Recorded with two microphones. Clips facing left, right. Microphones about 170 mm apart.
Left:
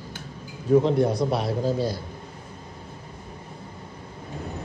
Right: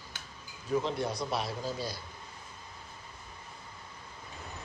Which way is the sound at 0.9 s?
55° left (ahead or behind).